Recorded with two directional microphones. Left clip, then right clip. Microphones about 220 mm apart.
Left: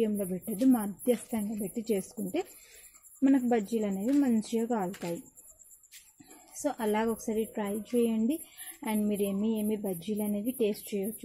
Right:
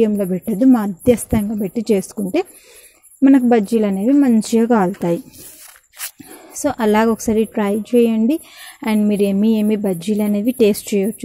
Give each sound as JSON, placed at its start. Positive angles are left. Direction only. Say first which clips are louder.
{"t": 0.0, "sound": "a woman's voice", "louder": "right 14 dB", "side_deg": -30}
{"t": 6.6, "sound": "a woman's voice", "louder": "right 14 dB", "side_deg": -35}